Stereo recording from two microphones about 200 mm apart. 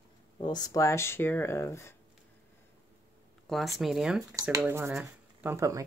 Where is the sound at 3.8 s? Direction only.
5° right (ahead or behind).